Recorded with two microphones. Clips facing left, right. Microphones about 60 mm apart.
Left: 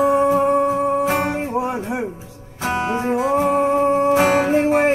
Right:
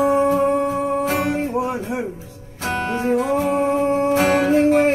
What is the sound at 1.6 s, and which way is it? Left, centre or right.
Music, centre.